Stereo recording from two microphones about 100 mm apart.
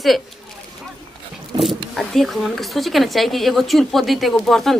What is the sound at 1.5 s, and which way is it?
Wild animals, 50° right (ahead or behind).